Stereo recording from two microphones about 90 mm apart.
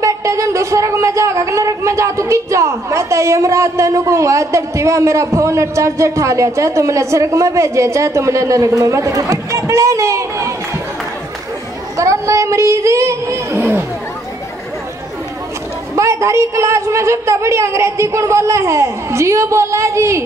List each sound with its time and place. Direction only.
0.0 s speech: 35° right (ahead or behind)
12.0 s speech: 35° right (ahead or behind)
16.0 s speech: 35° right (ahead or behind)